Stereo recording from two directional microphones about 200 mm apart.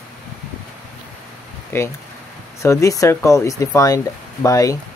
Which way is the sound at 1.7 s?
10° left (ahead or behind).